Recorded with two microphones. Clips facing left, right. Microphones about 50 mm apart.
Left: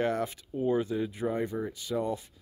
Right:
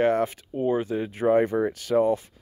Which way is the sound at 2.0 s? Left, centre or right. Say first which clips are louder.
Right 11 dB; right.